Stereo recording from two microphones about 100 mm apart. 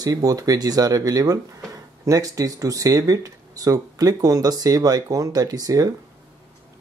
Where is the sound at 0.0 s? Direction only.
35° right (ahead or behind).